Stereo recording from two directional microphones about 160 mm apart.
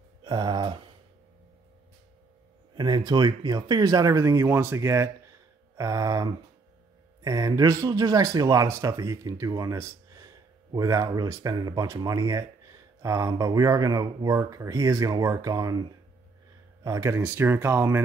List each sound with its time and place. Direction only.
0.2 s a sound: 30° right (ahead or behind)
2.8 s speech: 25° right (ahead or behind)
16.8 s speech: 20° right (ahead or behind)